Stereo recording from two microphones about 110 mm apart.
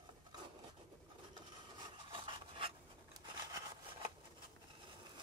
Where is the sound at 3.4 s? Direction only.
30° right (ahead or behind).